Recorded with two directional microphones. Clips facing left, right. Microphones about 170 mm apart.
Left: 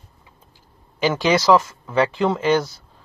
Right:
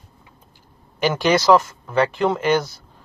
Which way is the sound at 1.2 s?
5° left (ahead or behind).